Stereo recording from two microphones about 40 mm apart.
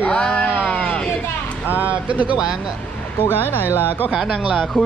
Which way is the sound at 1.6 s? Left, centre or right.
Right.